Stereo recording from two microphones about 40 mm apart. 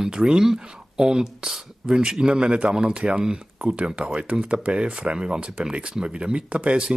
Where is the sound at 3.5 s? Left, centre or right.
Right.